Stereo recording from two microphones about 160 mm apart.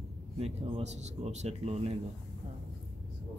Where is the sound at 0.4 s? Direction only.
40° right (ahead or behind).